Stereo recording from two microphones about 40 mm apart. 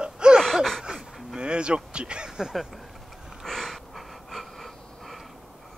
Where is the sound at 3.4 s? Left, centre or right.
Centre.